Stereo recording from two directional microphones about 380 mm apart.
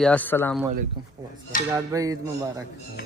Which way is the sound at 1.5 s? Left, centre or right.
Left.